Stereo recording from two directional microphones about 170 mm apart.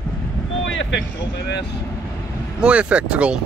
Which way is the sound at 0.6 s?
90° left.